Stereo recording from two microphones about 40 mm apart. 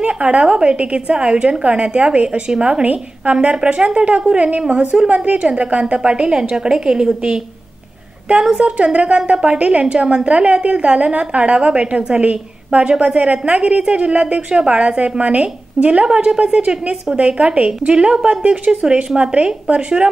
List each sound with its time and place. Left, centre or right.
0.0 s a woman's voice: right
8.4 s a woman's voice: centre
8.7 s a woman's voice: right